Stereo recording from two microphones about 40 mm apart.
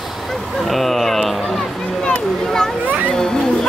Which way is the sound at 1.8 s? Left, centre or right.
Centre.